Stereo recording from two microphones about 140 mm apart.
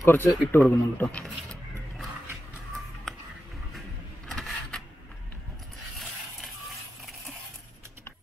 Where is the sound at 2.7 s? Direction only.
Centre (ahead or behind).